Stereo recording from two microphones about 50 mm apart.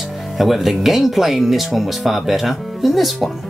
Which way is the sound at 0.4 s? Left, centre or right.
Centre.